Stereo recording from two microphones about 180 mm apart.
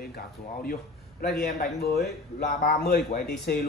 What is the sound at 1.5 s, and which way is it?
Speech, 60° left (ahead or behind).